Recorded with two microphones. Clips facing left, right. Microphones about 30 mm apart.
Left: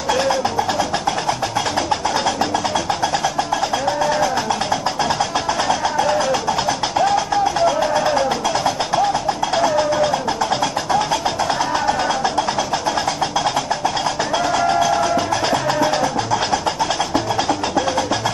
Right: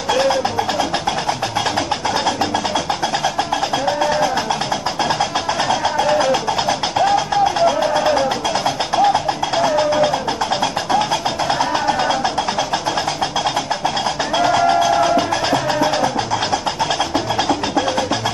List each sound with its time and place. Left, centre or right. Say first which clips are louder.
0.1 s music: right 2 dB; centre
3.8 s music: right 2 dB; centre
5.7 s music: right 2 dB; centre
7.5 s music: right 1 dB; centre
14.3 s music: right 4 dB; right
17.1 s music: right 1 dB; centre